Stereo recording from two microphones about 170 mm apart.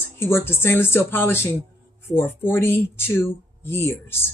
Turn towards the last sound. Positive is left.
turn(degrees=15)  # may be behind; listen again after turning